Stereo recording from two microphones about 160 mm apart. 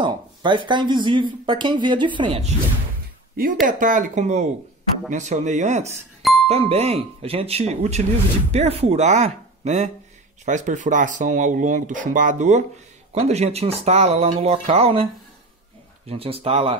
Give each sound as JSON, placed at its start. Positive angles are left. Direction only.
{"t": 0.0, "sound": "speech", "side_deg": -30}
{"t": 3.6, "sound": "speech", "side_deg": -55}
{"t": 16.1, "sound": "speech", "side_deg": -35}